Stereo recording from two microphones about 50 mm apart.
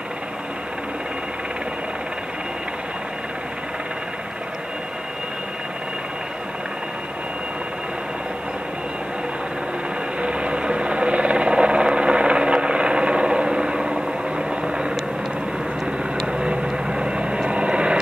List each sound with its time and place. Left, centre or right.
10.2 s vehicle: right
16.3 s vehicle: centre